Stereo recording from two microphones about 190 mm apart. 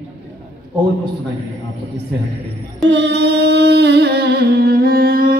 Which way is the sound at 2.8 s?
65° right (ahead or behind).